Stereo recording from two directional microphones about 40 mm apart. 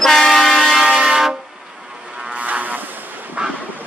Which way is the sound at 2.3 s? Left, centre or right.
Right.